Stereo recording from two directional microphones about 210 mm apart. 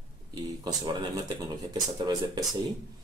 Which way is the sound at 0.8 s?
20° right (ahead or behind).